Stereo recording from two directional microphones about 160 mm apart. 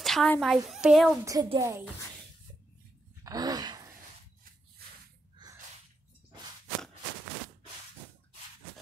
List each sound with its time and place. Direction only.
0.0 s a woman's voice: 5° left (ahead or behind)
1.2 s a woman's voice: 25° right (ahead or behind)
3.3 s groan: 25° right (ahead or behind)